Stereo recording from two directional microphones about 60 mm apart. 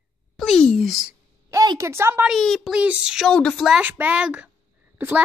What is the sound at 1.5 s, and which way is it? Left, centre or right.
Speech, right.